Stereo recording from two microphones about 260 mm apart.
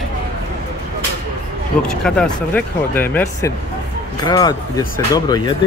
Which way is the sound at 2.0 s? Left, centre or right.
Centre.